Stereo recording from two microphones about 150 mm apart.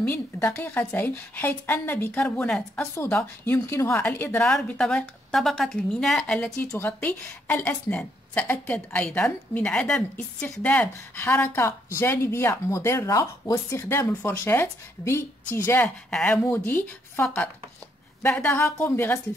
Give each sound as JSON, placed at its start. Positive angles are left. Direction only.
{"t": 0.1, "sound": "a woman's voice", "side_deg": 10}
{"t": 6.5, "sound": "a woman's voice", "side_deg": 15}